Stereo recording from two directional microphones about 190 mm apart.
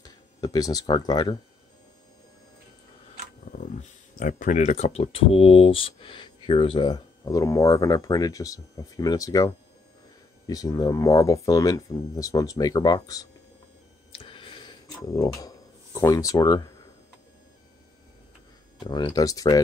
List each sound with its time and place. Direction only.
0.0 s speech: 20° left (ahead or behind)
4.2 s speech: 45° left (ahead or behind); by 13.3 s 20° left (ahead or behind)
14.1 s a sound: 25° left (ahead or behind)
15.0 s speech: 20° left (ahead or behind)
18.9 s speech: 20° left (ahead or behind)